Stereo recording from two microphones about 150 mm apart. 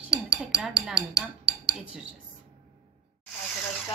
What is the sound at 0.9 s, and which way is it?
Dishes, 25° left (ahead or behind).